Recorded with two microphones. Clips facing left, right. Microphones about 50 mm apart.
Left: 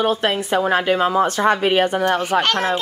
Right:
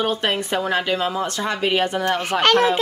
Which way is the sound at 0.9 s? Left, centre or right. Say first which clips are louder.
Left 6 dB; left.